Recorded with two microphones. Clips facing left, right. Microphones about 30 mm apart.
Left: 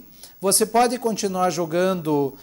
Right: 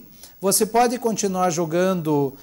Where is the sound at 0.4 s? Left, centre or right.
Left.